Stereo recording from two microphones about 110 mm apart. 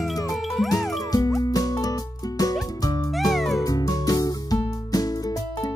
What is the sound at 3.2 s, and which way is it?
Music, centre (ahead or behind).